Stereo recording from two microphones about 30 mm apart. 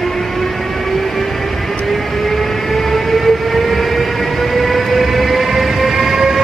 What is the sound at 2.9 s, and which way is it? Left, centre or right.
Train, centre.